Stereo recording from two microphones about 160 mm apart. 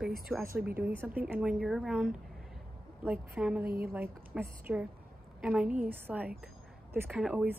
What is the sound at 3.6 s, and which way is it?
Speech, 70° right (ahead or behind).